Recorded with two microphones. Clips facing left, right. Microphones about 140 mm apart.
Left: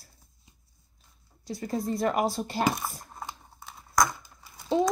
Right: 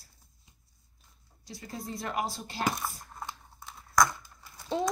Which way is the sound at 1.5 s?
50° left (ahead or behind).